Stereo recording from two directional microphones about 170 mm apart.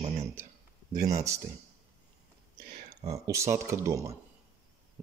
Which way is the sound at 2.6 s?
65° right (ahead or behind).